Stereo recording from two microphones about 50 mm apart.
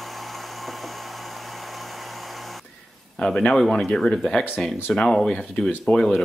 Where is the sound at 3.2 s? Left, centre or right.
Centre.